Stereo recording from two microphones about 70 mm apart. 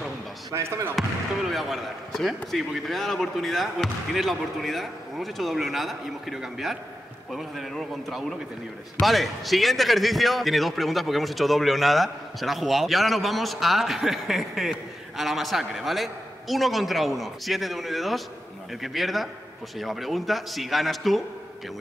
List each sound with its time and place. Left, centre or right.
0.6 s speech: right
0.9 s speech: centre